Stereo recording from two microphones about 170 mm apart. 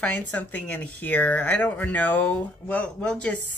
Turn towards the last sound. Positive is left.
turn(degrees=5)  # may be behind; listen again after turning